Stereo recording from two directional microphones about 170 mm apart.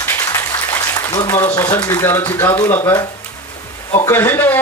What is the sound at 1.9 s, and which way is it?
Speech, 15° left (ahead or behind).